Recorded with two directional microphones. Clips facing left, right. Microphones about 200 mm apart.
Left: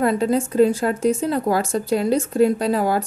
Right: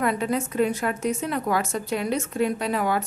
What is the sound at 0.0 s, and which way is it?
A woman's voice, 35° left (ahead or behind).